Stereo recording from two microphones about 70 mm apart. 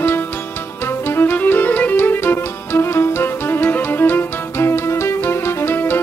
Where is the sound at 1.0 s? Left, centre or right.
Left.